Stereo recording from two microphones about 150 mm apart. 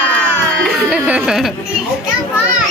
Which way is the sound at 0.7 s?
10° right (ahead or behind).